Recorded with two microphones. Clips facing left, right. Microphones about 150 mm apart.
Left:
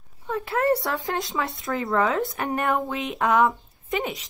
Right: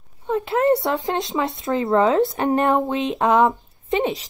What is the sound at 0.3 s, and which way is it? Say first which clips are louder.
Speech: right 5 dB; 20° right (ahead or behind).